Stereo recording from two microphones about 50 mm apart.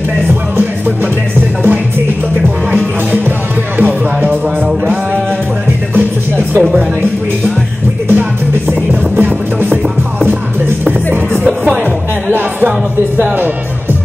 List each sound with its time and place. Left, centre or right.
0.3 s music: right
2.7 s music: right
5.9 s music: right
8.1 s music: right
12.3 s music: right